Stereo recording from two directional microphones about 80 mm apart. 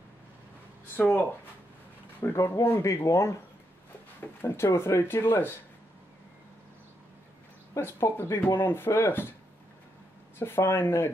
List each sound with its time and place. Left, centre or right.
0.9 s speech: left
2.3 s speech: left
7.7 s speech: left
10.4 s speech: left